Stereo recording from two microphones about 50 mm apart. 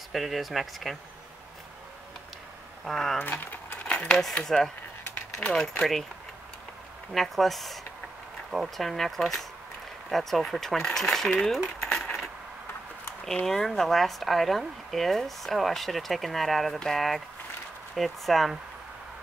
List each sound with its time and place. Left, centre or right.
0.1 s speech: centre
2.8 s speech: centre
3.8 s a sound: centre
4.5 s speech: centre
7.2 s speech: centre
11.9 s coin: centre
13.5 s speech: centre